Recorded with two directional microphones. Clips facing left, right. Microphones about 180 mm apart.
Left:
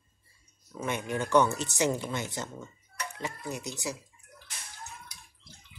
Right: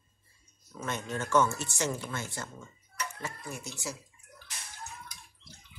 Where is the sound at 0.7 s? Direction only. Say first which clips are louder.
Left 3 dB; 15° left (ahead or behind).